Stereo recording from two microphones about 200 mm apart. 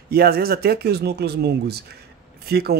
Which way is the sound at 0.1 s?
50° right (ahead or behind).